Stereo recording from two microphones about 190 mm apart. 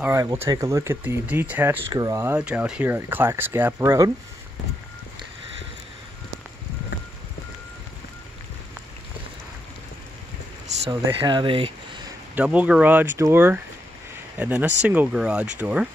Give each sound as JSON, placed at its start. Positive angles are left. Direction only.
{"t": 0.0, "sound": "speech", "side_deg": -15}
{"t": 10.9, "sound": "speech", "side_deg": -20}
{"t": 12.4, "sound": "speech", "side_deg": -5}